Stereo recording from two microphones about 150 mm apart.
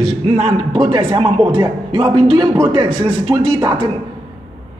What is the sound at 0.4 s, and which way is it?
A man's voice, 35° right (ahead or behind).